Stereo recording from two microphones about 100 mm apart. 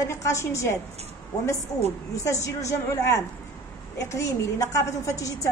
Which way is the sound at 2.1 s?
30° left (ahead or behind).